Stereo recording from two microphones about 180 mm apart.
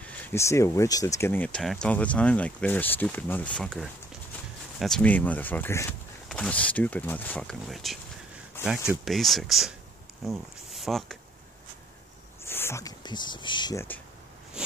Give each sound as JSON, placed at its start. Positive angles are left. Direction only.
{"t": 0.3, "sound": "speech", "side_deg": 15}
{"t": 12.4, "sound": "speech", "side_deg": 15}